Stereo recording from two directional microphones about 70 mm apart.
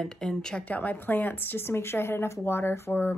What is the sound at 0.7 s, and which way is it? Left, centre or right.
Speech, left.